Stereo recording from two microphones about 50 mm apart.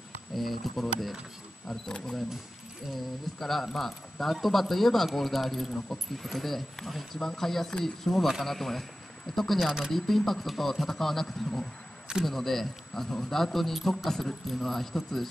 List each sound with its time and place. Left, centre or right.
0.3 s a man's voice: centre
1.7 s speech: centre
2.9 s a man's voice: centre
9.7 s speech: centre
9.9 s a man's voice: centre